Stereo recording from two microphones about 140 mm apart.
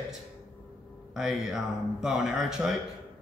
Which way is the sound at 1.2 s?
5° right (ahead or behind).